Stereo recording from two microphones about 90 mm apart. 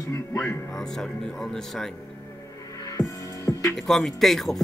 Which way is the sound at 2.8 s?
40° left (ahead or behind).